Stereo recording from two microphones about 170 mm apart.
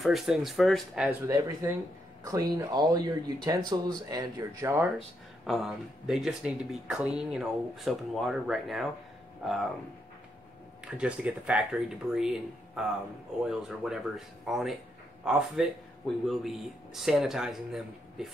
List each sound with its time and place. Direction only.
0.0 s speech: centre (ahead or behind)
1.2 s speech: 20° right (ahead or behind)
5.4 s speech: centre (ahead or behind)
10.9 s speech: 5° right (ahead or behind)